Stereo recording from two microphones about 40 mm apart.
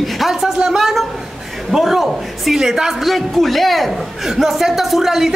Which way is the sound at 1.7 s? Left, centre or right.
Centre.